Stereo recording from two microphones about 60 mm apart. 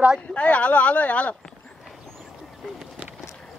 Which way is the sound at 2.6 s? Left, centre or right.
Centre.